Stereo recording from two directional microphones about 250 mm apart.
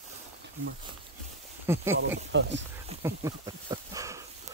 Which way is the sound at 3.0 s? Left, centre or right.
Centre.